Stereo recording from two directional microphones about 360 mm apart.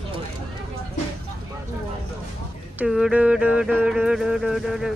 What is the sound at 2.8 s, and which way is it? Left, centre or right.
Speech, centre.